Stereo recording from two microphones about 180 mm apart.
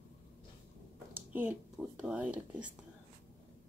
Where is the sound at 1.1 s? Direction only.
10° right (ahead or behind).